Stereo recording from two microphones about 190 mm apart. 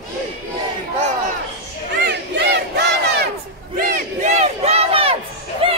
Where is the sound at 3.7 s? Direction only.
45° right (ahead or behind).